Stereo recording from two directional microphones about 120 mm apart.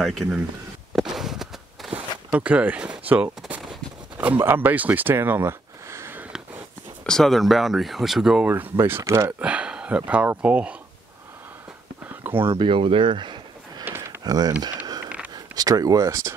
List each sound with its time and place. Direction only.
0.0 s speech: centre (ahead or behind)
0.9 s walk: centre (ahead or behind)
2.3 s speech: 10° right (ahead or behind)
3.1 s a sound: 15° right (ahead or behind)
4.4 s speech: 15° right (ahead or behind)
7.1 s speech: 5° left (ahead or behind)
8.5 s speech: 15° right (ahead or behind)
9.4 s speech: 10° right (ahead or behind)
12.1 s a sound: 15° right (ahead or behind)
12.5 s a sound: 45° right (ahead or behind)
13.8 s a sound: 20° right (ahead or behind)
14.2 s speech: 30° right (ahead or behind)